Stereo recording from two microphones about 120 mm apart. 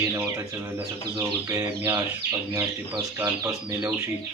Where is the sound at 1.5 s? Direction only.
25° right (ahead or behind).